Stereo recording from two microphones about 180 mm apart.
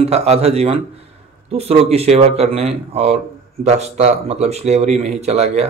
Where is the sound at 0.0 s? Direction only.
35° right (ahead or behind).